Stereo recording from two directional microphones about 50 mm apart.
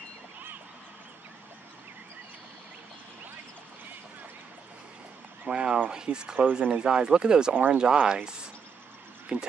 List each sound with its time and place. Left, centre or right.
5.5 s speech: centre